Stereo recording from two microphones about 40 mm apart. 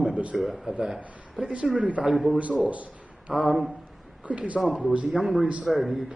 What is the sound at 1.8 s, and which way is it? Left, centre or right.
A man's voice, right.